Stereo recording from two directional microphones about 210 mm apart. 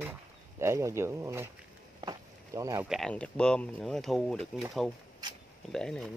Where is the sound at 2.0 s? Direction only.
15° right (ahead or behind).